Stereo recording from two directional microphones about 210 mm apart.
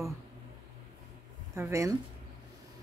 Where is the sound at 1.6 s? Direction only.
15° right (ahead or behind).